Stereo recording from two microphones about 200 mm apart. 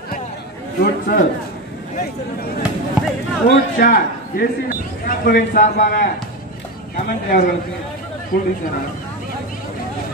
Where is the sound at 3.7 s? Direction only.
45° left (ahead or behind).